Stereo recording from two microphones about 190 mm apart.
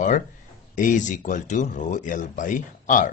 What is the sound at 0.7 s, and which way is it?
Speech, 45° left (ahead or behind).